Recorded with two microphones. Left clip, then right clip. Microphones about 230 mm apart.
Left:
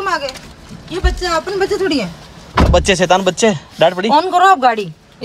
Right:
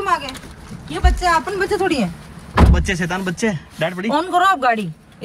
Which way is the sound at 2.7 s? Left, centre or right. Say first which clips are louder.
Left 11 dB; centre.